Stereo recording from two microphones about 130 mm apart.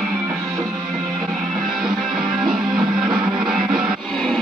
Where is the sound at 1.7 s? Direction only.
35° right (ahead or behind).